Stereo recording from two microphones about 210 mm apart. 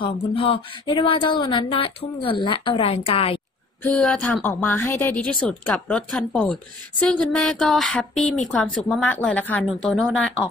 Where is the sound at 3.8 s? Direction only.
5° left (ahead or behind).